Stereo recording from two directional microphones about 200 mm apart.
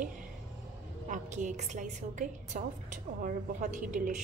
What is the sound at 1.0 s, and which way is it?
A woman's voice, 40° right (ahead or behind).